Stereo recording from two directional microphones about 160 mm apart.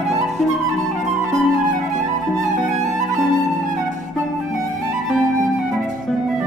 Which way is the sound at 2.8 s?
Centre (ahead or behind).